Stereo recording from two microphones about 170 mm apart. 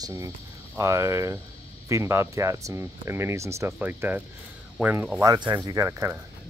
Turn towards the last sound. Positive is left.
turn(degrees=-20)  # may be behind; listen again after turning